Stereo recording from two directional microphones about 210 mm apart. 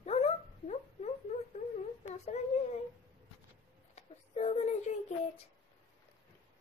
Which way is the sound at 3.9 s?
30° left (ahead or behind).